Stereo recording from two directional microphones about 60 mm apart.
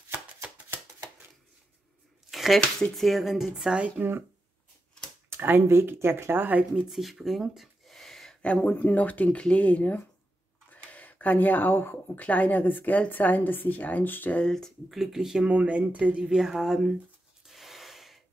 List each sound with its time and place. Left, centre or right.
0.1 s chopping: right
2.3 s a sound: centre
3.0 s speech: centre
4.0 s speech: right
5.3 s speech: right
6.7 s gasp: centre
8.4 s speech: left
12.2 s a woman's voice: left
14.9 s speech: centre
15.4 s speech: right
16.3 s speech: centre
17.5 s a sound: centre